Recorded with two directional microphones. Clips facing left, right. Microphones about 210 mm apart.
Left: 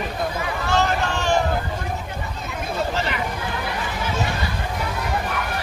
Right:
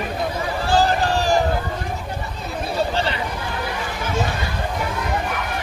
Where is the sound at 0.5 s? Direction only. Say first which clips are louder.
Right 4 dB; 30° right (ahead or behind).